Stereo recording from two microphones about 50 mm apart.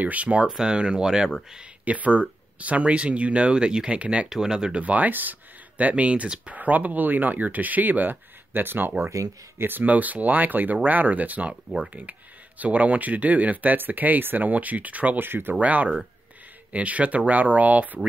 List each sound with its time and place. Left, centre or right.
0.0 s speech: right
0.5 s speech: centre
1.9 s speech: right
4.3 s speech: centre
4.8 s speech: right
6.2 s speech: centre
6.5 s speech: right
15.1 s speech: right
15.6 s speech: right